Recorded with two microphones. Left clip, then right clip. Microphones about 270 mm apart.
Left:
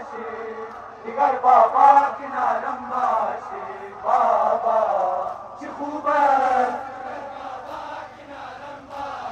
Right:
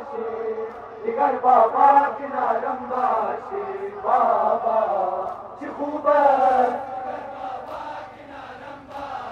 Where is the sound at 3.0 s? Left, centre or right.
Left.